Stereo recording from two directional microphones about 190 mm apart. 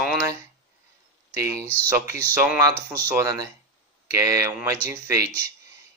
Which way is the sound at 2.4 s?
10° right (ahead or behind).